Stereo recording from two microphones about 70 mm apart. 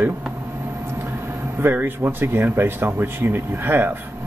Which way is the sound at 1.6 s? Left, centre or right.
Right.